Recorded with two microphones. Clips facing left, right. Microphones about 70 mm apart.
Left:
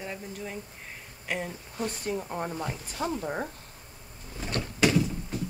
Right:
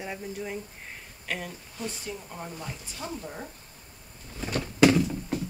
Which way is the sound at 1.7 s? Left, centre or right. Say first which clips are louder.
Left 6 dB; left.